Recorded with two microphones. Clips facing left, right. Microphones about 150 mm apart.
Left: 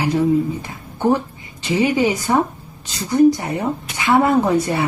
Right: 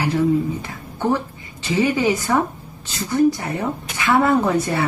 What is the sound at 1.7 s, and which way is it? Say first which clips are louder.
Speech: left 1 dB; 15° left (ahead or behind).